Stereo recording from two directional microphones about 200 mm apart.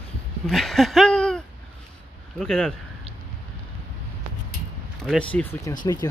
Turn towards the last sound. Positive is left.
turn(degrees=20)  # may be behind; listen again after turning